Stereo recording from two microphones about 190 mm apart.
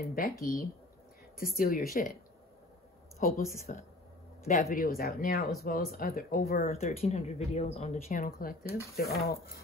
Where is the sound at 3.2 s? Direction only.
50° left (ahead or behind).